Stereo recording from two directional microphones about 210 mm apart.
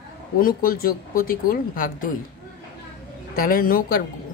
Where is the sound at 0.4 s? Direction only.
45° left (ahead or behind).